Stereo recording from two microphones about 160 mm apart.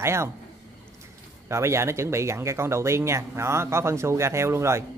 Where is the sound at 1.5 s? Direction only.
15° right (ahead or behind).